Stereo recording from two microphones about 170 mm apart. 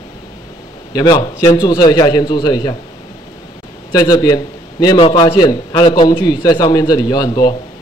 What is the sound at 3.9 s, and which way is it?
A man's voice, 20° left (ahead or behind).